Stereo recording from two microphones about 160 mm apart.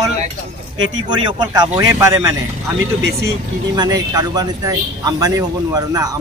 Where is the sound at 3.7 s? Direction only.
25° right (ahead or behind).